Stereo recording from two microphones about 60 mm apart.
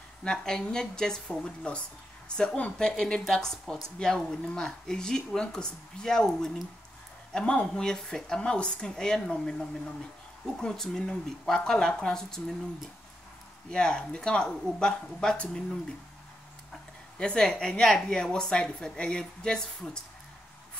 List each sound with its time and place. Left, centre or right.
0.2 s a woman's voice: centre
13.7 s a woman's voice: centre
17.2 s a woman's voice: centre